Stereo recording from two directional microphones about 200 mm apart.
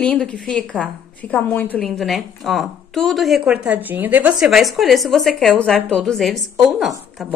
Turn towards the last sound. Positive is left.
turn(degrees=0)  # may be behind; listen again after turning